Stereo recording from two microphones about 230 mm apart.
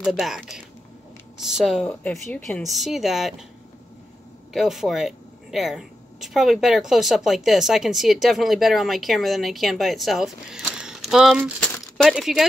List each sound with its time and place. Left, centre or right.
0.0 s speech: centre
4.5 s speech: centre